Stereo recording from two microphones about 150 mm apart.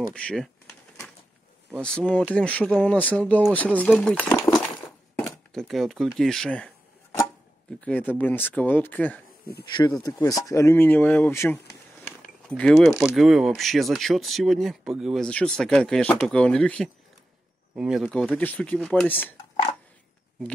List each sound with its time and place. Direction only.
0.1 s speech: 5° left (ahead or behind)
1.7 s speech: 5° left (ahead or behind)
5.5 s speech: centre (ahead or behind)
7.8 s speech: 10° left (ahead or behind)
9.7 s speech: 30° left (ahead or behind); by 19.3 s 10° left (ahead or behind)